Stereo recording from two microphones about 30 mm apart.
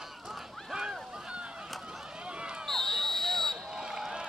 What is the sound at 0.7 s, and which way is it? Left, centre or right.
Waves, centre.